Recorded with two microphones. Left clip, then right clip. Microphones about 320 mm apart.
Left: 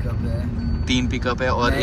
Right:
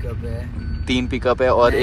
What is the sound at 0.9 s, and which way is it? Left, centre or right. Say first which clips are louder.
Speech: right 4 dB; centre.